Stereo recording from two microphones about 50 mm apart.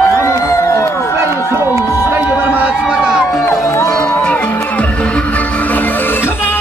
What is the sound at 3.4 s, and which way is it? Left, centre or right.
Music, left.